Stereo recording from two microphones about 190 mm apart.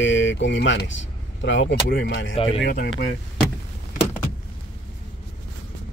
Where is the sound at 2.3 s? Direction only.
30° left (ahead or behind).